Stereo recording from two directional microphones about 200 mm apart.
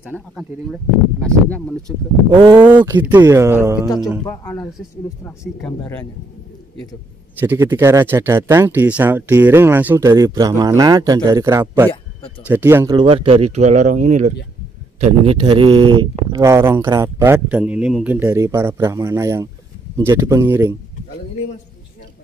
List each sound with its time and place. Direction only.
1.2 s speech: 5° left (ahead or behind)
2.3 s speech: 20° right (ahead or behind)
2.6 s speech: 10° right (ahead or behind)
4.3 s speech: 15° left (ahead or behind)
7.3 s speech: 10° right (ahead or behind)